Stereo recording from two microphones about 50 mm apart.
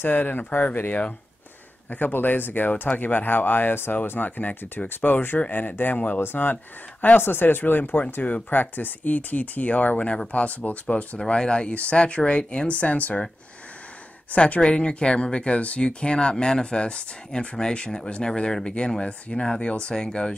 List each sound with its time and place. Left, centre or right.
0.0 s speech: left
8.2 s speech: left
14.3 s speech: left